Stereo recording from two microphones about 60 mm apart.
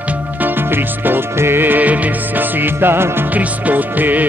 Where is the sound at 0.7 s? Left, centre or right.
Right.